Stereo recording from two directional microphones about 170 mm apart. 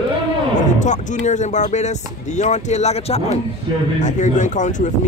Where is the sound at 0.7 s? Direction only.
45° left (ahead or behind).